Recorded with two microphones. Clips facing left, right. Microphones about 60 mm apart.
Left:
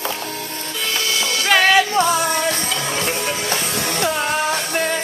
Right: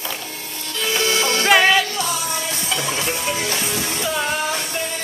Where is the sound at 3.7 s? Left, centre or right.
Left.